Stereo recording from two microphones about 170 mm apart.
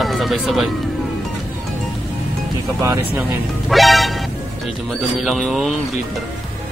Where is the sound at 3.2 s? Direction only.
Centre (ahead or behind).